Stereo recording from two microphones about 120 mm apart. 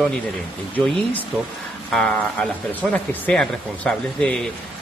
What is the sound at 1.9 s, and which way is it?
Speech, 5° left (ahead or behind).